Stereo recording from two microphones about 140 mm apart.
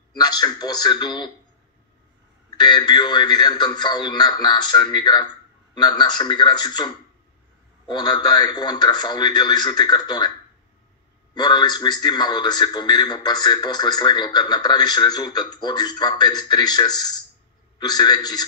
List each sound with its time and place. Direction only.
0.1 s a man's voice: 30° left (ahead or behind)
2.5 s a man's voice: 30° left (ahead or behind)
11.3 s a man's voice: 30° left (ahead or behind)